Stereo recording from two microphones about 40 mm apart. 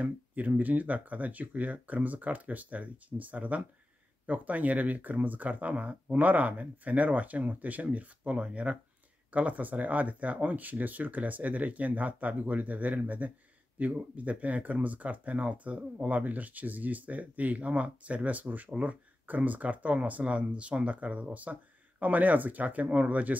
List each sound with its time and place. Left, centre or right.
0.0 s speech: right